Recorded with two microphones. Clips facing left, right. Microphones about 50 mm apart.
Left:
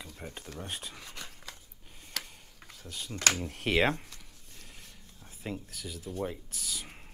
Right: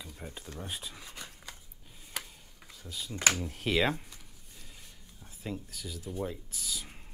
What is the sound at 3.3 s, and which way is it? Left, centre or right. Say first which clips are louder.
Speech: left 1 dB; centre.